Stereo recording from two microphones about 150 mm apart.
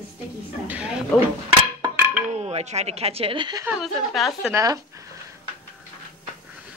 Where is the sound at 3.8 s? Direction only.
Centre (ahead or behind).